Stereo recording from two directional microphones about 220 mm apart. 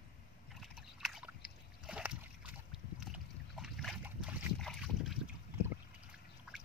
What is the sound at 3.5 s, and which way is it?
Boat, centre (ahead or behind).